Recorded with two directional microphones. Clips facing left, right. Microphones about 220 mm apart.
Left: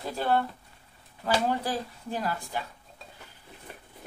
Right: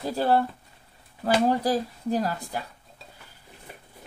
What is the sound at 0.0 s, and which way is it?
Speech, 35° right (ahead or behind).